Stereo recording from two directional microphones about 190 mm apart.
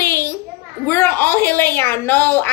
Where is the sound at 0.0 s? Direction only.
15° left (ahead or behind).